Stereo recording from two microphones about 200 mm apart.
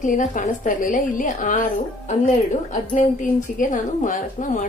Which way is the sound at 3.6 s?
40° left (ahead or behind).